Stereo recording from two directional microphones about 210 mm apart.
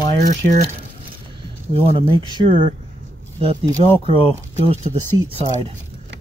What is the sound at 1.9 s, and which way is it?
Speech, 25° right (ahead or behind).